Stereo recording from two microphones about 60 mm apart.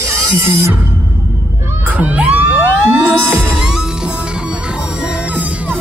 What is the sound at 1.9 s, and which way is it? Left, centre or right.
Crowd, right.